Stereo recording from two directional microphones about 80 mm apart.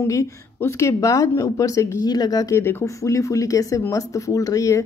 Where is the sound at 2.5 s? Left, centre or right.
Left.